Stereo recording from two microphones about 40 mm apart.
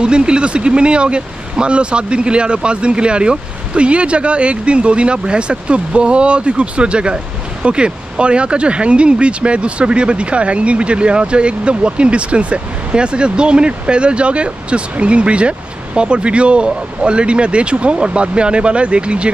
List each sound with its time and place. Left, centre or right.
0.0 s speech: right